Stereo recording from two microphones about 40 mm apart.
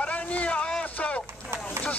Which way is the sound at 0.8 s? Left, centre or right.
Left.